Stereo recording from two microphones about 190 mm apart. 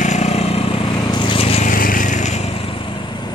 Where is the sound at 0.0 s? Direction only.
35° left (ahead or behind).